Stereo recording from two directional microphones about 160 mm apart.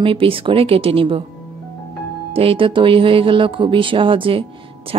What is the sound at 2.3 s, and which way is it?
A woman's voice, 35° right (ahead or behind).